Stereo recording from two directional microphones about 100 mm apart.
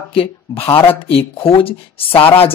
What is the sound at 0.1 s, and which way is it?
Speech, 65° left (ahead or behind).